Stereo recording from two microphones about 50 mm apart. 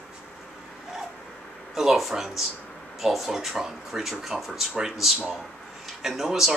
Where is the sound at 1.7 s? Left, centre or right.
Centre.